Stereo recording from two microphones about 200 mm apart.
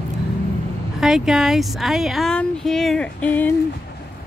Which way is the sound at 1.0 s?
Centre (ahead or behind).